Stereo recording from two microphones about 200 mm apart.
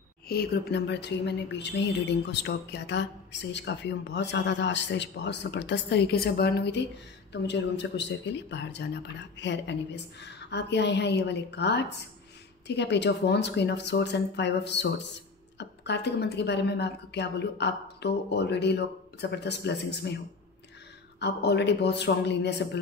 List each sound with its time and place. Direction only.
0.3 s speech: 50° left (ahead or behind)
21.2 s speech: 60° left (ahead or behind)